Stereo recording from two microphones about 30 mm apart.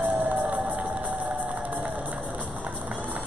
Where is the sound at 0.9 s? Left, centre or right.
Right.